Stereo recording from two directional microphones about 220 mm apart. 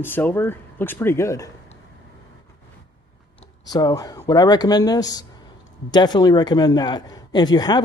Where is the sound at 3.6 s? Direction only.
15° left (ahead or behind).